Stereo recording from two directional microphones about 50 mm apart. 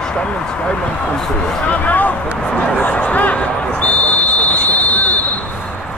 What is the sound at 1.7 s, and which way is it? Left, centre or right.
Speech, left.